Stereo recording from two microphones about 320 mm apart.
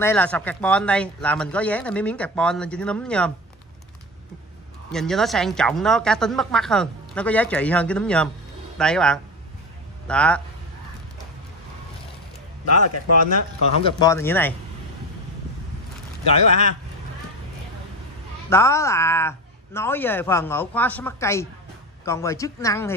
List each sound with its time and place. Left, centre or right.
0.0 s speech: centre
4.9 s speech: centre
12.6 s speech: left
13.8 s a man's voice: centre
18.5 s a man's voice: centre